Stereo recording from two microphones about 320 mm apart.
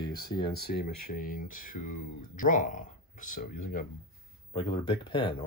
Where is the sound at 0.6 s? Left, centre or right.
Left.